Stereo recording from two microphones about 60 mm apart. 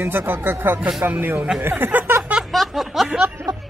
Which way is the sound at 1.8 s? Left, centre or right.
Right.